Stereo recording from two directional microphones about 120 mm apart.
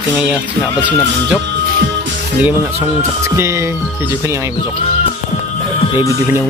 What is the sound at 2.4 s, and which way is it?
Music, 20° right (ahead or behind).